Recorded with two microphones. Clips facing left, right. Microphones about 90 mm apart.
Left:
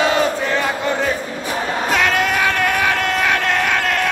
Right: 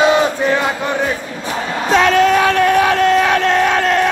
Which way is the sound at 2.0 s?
35° right (ahead or behind).